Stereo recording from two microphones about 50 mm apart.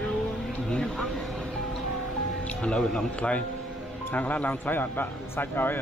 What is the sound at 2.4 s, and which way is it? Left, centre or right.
Speech, centre.